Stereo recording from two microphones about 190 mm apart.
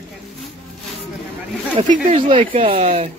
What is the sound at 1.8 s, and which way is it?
Speech, 35° right (ahead or behind).